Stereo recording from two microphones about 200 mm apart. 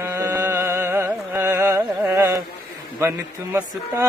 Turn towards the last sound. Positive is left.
turn(degrees=-10)  # may be behind; listen again after turning